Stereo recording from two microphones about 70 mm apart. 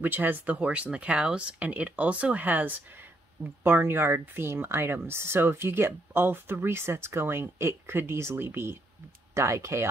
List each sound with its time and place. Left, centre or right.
0.0 s speech: right